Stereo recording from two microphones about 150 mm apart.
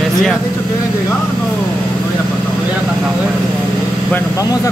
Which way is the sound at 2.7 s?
5° right (ahead or behind).